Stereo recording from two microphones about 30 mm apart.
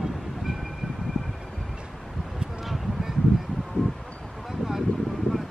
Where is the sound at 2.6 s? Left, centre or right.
Centre.